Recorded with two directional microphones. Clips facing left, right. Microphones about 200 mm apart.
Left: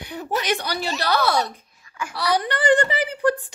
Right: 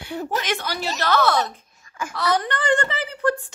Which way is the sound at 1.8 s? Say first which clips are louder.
Right 1 dB; 45° right (ahead or behind).